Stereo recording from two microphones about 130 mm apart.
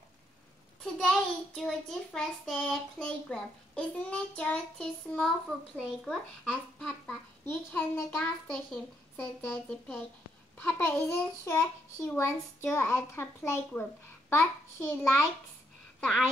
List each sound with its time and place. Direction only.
0.9 s child singing: 5° left (ahead or behind)
6.0 s a child's voice: 5° left (ahead or behind)